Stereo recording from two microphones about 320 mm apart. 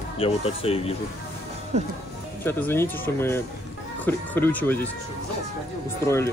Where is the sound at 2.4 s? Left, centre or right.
Centre.